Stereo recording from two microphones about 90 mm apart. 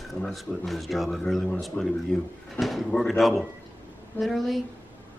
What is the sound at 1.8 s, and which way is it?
Speech, 25° left (ahead or behind).